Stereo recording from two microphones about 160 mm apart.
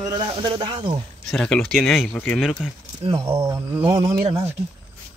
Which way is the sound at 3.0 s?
35° right (ahead or behind).